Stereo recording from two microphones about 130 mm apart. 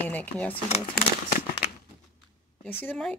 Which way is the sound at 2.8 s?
15° left (ahead or behind).